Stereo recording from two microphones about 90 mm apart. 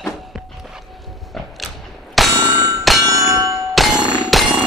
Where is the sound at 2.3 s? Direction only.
40° right (ahead or behind).